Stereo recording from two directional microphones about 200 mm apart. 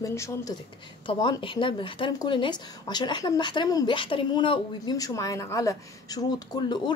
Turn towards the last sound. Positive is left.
turn(degrees=20)  # may be behind; listen again after turning